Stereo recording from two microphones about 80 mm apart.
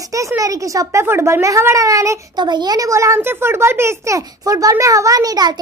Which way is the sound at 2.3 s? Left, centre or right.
Right.